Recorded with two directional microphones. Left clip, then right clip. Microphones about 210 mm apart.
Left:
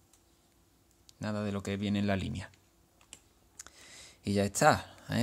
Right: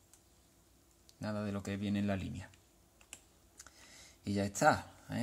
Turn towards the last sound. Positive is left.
turn(degrees=40)  # may be behind; listen again after turning